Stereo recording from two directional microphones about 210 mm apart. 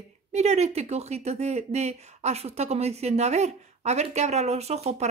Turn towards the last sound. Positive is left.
turn(degrees=-30)  # may be behind; listen again after turning